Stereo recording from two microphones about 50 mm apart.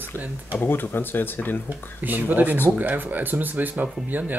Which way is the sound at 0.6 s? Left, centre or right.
Left.